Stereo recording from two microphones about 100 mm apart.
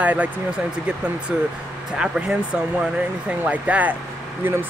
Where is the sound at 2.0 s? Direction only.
10° right (ahead or behind).